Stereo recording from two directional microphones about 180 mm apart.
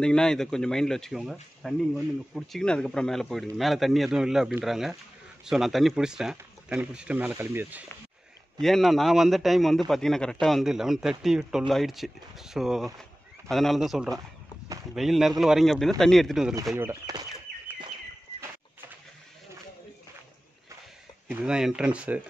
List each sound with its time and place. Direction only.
0.0 s speech: 5° left (ahead or behind)
8.5 s speech: centre (ahead or behind)
16.7 s speech: 15° right (ahead or behind)
21.3 s speech: 5° right (ahead or behind)